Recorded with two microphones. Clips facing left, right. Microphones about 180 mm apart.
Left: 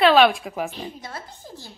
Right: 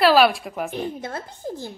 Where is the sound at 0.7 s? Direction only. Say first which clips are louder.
Right 6 dB; 55° right (ahead or behind).